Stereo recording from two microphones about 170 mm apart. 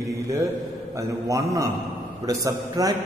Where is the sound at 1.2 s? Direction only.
20° right (ahead or behind).